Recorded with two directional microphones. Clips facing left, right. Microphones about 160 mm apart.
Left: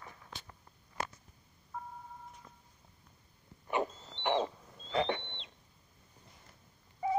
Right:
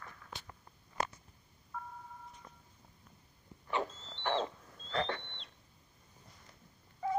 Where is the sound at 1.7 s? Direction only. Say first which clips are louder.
Left 1 dB; 25° left (ahead or behind).